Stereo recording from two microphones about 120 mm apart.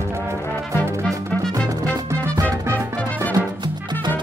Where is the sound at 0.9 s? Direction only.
25° right (ahead or behind).